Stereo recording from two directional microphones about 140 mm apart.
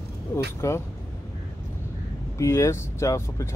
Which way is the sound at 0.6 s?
20° left (ahead or behind).